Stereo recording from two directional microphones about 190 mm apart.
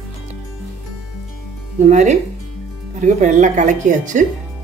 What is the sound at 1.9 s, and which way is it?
Speech, 40° right (ahead or behind).